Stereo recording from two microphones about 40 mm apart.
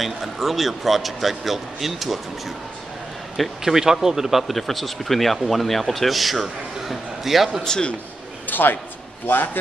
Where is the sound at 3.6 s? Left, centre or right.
Centre.